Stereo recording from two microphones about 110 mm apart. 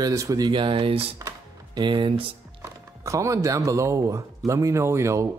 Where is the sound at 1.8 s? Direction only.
50° right (ahead or behind).